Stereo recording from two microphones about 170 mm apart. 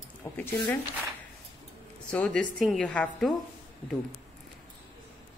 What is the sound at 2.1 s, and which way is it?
A woman's voice, 5° left (ahead or behind).